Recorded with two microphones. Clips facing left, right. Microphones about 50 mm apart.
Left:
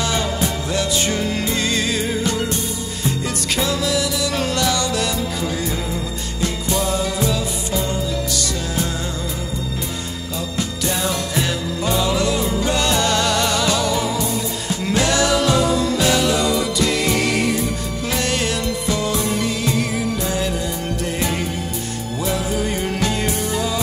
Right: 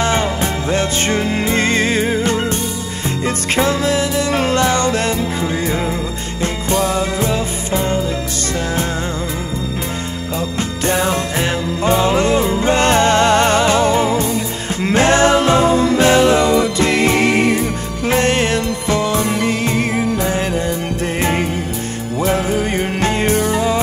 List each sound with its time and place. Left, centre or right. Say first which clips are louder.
0.0 s music: right 4 dB; right
10.6 s music: right 5 dB; right